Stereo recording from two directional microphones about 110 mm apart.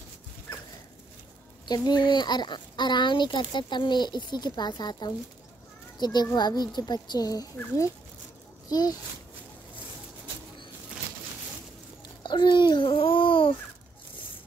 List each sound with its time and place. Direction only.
1.7 s a child's voice: 40° left (ahead or behind)
12.0 s babbling: 45° left (ahead or behind)